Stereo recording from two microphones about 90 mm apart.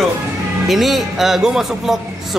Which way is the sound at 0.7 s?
Centre (ahead or behind).